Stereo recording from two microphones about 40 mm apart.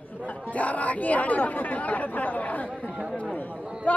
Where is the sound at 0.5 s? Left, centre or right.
Left.